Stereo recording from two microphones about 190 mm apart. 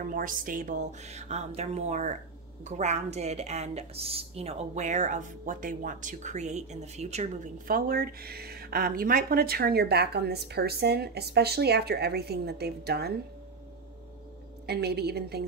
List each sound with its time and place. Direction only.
0.0 s a woman's voice: 45° right (ahead or behind)
7.7 s speech: 50° right (ahead or behind)
14.7 s speech: 60° right (ahead or behind)